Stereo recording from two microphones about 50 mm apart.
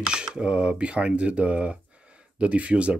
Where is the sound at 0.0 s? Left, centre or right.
Centre.